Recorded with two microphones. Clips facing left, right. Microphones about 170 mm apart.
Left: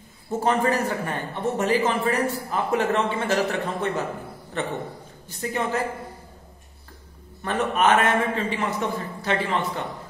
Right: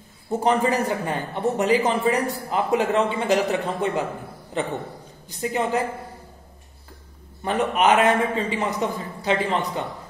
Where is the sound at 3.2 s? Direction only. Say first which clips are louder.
Right 2 dB; 15° right (ahead or behind).